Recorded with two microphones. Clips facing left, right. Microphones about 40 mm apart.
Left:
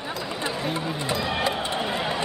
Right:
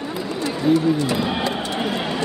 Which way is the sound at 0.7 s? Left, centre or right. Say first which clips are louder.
Right 10 dB; left.